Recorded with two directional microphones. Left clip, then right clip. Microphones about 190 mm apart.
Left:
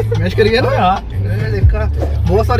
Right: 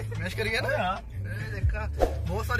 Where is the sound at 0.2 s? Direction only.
20° left (ahead or behind).